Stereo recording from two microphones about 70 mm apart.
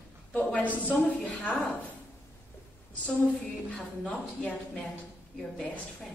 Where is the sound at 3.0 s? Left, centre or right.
Centre.